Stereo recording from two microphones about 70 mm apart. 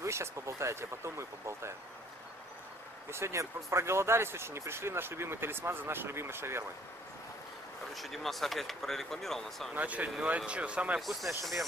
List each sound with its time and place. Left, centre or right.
0.0 s speech: right
3.1 s speech: right
7.9 s speech: centre
9.8 s speech: right
11.0 s speech: centre